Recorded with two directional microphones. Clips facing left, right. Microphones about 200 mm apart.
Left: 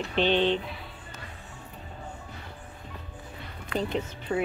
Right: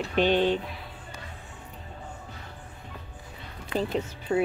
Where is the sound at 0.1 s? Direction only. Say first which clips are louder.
Right 1 dB; 10° right (ahead or behind).